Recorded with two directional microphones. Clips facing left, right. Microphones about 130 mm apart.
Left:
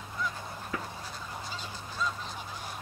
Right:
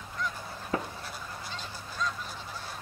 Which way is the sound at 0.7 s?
30° right (ahead or behind).